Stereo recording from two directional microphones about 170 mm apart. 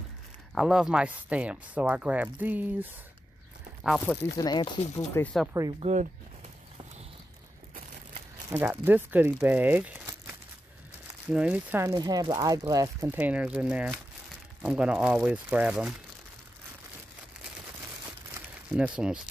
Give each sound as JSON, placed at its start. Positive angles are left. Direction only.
{"t": 0.6, "sound": "speech", "side_deg": -5}
{"t": 4.4, "sound": "speech", "side_deg": 25}
{"t": 5.2, "sound": "speech", "side_deg": 0}
{"t": 5.8, "sound": "speech", "side_deg": -40}
{"t": 8.6, "sound": "speech", "side_deg": -10}
{"t": 11.9, "sound": "speech", "side_deg": -25}
{"t": 18.7, "sound": "speech", "side_deg": -5}